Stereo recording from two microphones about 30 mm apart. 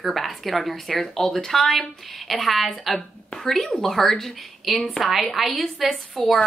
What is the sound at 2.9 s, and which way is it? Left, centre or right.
A woman's voice, left.